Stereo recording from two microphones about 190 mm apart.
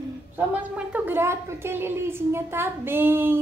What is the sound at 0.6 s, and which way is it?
A woman's voice, 10° right (ahead or behind).